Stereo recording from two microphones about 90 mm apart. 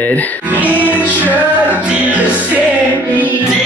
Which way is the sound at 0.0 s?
20° left (ahead or behind).